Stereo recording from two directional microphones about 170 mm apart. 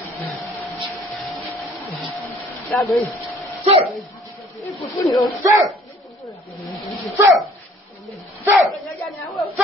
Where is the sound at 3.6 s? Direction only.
35° right (ahead or behind).